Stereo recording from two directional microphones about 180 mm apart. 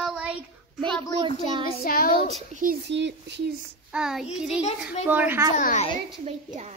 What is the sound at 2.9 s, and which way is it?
Speech, 75° right (ahead or behind).